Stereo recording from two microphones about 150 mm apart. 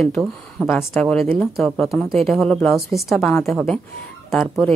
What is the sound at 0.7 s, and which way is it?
Speech, 15° left (ahead or behind).